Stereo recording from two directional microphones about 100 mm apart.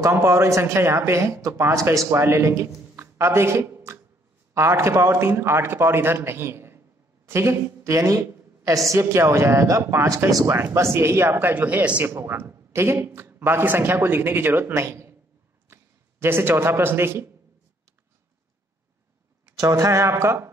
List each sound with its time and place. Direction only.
0.0 s a man's voice: 25° right (ahead or behind)
19.6 s speech: 35° right (ahead or behind)